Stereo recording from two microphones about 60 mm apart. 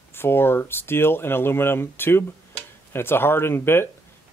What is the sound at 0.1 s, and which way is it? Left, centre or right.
Speech, left.